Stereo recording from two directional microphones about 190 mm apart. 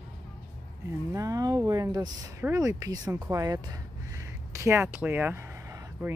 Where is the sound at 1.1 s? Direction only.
15° right (ahead or behind).